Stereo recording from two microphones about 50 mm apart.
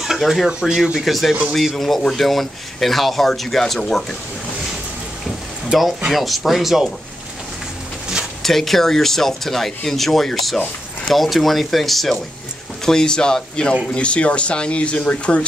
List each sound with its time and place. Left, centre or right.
0.5 s speech: centre
1.0 s speech: centre
5.7 s speech: centre
8.4 s speech: centre; by 15.4 s left